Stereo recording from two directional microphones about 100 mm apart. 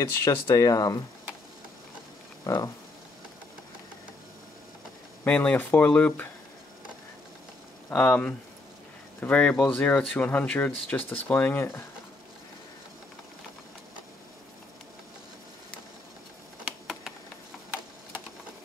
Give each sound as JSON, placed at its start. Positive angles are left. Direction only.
{"t": 0.0, "sound": "speech", "side_deg": 30}
{"t": 2.4, "sound": "speech", "side_deg": 40}
{"t": 5.2, "sound": "speech", "side_deg": 15}
{"t": 7.9, "sound": "speech", "side_deg": 15}